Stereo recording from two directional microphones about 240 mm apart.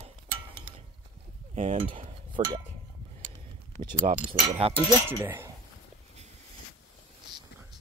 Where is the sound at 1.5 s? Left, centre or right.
Right.